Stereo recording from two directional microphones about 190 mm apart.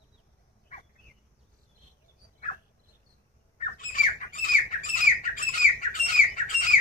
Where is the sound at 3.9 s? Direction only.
45° left (ahead or behind).